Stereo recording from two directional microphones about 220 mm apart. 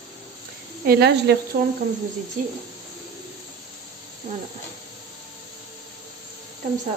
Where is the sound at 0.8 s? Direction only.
45° right (ahead or behind).